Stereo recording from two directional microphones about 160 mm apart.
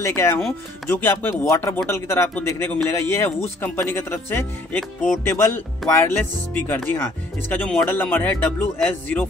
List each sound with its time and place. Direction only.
0.0 s speech: 15° left (ahead or behind)